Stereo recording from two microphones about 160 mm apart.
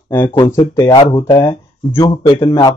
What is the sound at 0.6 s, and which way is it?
Speech, 25° left (ahead or behind).